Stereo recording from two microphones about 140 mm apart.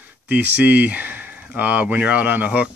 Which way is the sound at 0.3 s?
10° right (ahead or behind).